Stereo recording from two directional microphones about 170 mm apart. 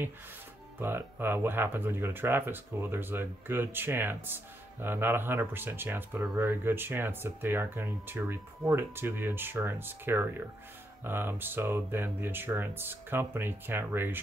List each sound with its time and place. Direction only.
0.7 s speech: 15° right (ahead or behind)